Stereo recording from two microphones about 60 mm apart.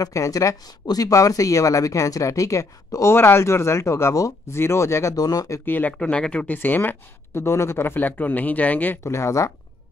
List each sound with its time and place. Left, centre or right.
0.0 s speech: left
3.2 s speech: left
5.1 s speech: left
5.7 s speech: left
5.9 s speech: centre
9.0 s speech: left